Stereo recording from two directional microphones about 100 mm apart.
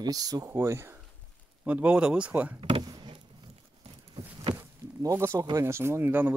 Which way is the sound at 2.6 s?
60° right (ahead or behind).